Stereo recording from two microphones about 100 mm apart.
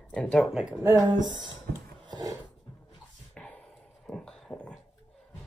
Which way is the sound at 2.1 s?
40° right (ahead or behind).